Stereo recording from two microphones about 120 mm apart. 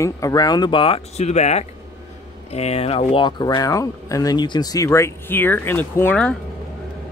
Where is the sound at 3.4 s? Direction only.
35° left (ahead or behind); by 6.3 s 10° left (ahead or behind).